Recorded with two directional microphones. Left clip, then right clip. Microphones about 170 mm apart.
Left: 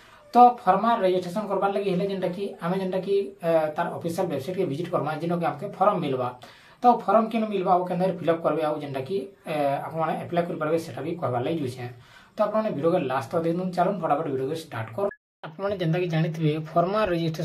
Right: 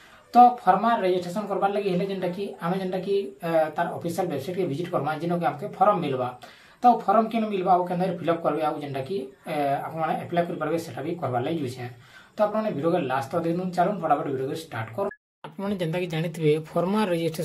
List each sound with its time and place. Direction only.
0.3 s speech: 5° left (ahead or behind)
15.6 s speech: 40° right (ahead or behind)